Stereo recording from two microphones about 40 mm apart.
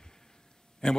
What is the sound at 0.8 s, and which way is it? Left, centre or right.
Speech, centre.